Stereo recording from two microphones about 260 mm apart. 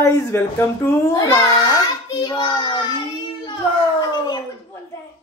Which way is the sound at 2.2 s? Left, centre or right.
Centre.